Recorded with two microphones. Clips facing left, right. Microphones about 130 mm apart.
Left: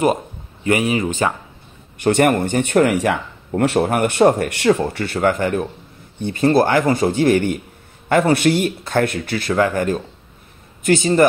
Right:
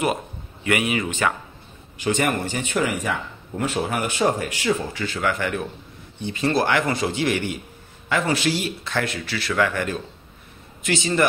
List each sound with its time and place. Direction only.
0.7 s speech: 35° left (ahead or behind)
2.0 s speech: 60° left (ahead or behind)